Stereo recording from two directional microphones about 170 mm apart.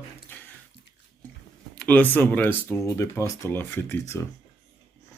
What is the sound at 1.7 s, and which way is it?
Speech, 10° left (ahead or behind).